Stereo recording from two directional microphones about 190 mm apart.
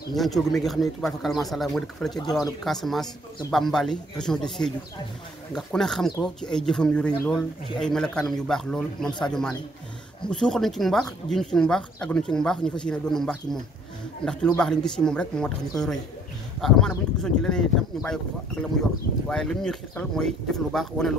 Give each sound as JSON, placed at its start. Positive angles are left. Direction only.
{"t": 0.1, "sound": "speech", "side_deg": 0}
{"t": 14.6, "sound": "speech", "side_deg": 5}